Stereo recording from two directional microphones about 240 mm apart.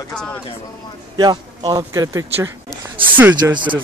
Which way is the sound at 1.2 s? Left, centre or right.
Centre.